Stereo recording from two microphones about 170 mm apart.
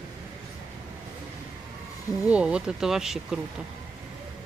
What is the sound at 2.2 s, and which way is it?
Speech, 5° right (ahead or behind).